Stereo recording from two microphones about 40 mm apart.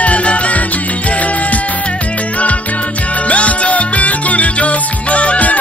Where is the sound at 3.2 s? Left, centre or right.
Left.